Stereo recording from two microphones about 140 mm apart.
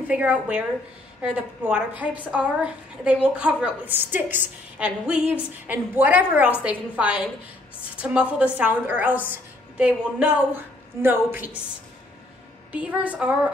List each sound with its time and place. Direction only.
0.1 s a woman's voice: 10° right (ahead or behind)
12.7 s a woman's voice: 10° right (ahead or behind)